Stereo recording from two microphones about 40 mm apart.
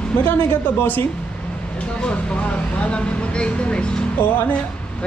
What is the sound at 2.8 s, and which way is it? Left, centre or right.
Speech, left.